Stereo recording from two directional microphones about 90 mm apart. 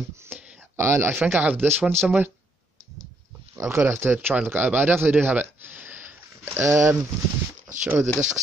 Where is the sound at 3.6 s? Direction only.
30° right (ahead or behind).